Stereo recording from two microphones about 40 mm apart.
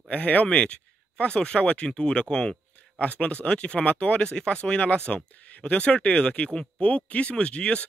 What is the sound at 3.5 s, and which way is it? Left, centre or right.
Speech, left.